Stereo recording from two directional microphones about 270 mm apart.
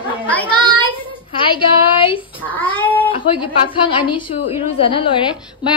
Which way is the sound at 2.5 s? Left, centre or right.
Centre.